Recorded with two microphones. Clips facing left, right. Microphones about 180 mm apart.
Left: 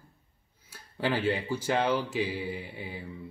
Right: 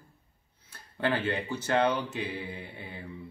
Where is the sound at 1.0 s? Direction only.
10° left (ahead or behind).